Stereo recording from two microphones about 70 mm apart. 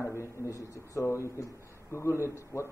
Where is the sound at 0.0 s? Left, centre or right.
Left.